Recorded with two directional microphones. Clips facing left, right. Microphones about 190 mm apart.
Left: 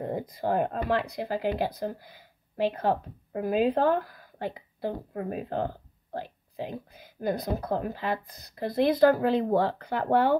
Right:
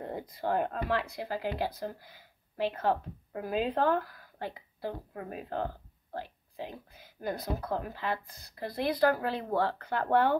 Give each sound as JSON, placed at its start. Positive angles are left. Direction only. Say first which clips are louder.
{"t": 0.0, "sound": "speech", "louder": "left 5 dB", "side_deg": 15}